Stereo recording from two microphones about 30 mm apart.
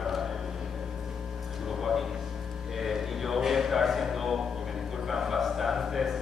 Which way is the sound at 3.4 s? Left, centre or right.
Centre.